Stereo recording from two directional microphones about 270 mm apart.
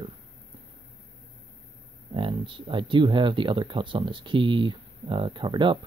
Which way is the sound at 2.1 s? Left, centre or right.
Centre.